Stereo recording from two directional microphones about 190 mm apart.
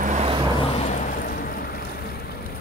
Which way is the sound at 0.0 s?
40° right (ahead or behind).